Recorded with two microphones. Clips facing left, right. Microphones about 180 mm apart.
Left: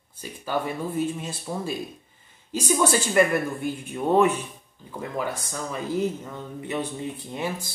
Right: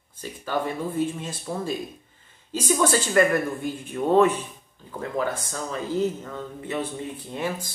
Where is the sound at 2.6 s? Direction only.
15° left (ahead or behind).